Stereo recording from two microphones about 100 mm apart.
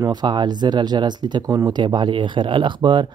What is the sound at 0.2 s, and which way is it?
Speech, 45° right (ahead or behind).